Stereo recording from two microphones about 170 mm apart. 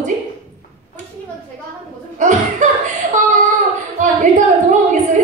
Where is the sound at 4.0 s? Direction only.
50° right (ahead or behind).